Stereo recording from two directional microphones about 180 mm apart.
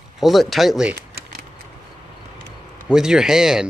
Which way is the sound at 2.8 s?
5° right (ahead or behind).